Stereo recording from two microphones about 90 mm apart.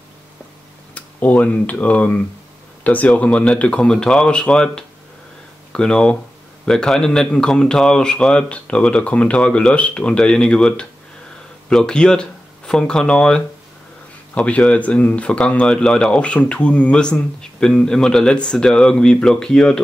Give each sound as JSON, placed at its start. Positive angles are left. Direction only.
{"t": 0.9, "sound": "speech", "side_deg": 15}